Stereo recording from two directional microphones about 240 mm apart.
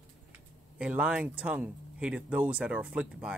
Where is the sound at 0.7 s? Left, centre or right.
Centre.